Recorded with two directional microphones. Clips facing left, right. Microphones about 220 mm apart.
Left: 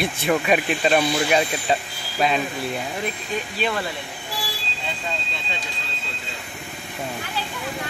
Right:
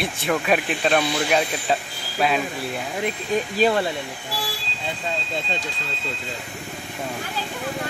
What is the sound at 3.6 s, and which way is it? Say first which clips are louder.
Speech: right 6 dB; 35° right (ahead or behind).